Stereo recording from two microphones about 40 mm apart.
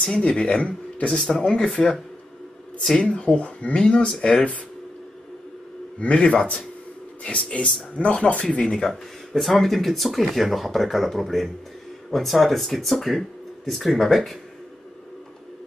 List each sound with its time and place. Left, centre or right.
0.0 s speech: left
0.7 s speech: left
3.0 s speech: left
5.9 s speech: left
8.5 s speech: centre